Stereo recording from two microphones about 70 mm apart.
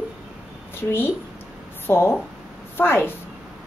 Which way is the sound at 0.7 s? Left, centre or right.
Left.